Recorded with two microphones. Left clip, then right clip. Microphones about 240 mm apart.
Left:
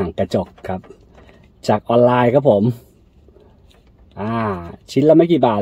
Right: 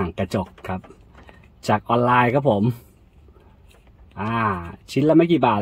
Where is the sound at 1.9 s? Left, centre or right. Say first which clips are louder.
Left 5 dB; right.